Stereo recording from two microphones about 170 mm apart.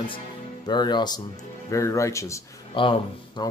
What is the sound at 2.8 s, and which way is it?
Speech, 30° left (ahead or behind).